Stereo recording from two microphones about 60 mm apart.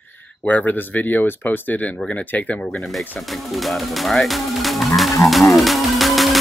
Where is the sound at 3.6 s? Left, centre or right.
Centre.